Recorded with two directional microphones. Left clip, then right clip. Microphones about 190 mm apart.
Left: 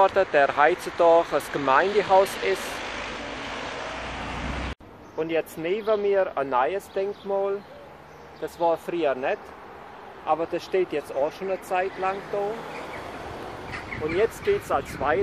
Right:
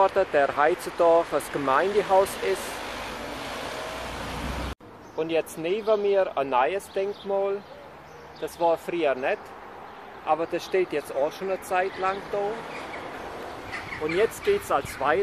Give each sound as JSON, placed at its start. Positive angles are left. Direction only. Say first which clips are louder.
{"t": 0.0, "sound": "speech", "louder": "left 2 dB", "side_deg": -5}
{"t": 2.6, "sound": "vehicle", "louder": "left 2 dB", "side_deg": -45}
{"t": 5.2, "sound": "speech", "louder": "even", "side_deg": 0}
{"t": 8.5, "sound": "speech", "louder": "even", "side_deg": 5}
{"t": 14.0, "sound": "speech", "louder": "even", "side_deg": 0}